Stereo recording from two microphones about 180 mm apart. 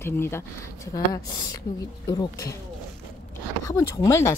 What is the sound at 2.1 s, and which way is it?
Speech, 20° left (ahead or behind).